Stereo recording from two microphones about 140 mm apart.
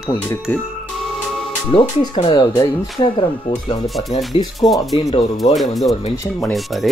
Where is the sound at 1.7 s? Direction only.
40° left (ahead or behind).